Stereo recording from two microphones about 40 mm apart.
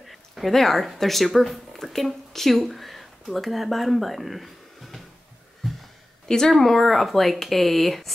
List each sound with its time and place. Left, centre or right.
0.0 s speech: centre
6.2 s speech: centre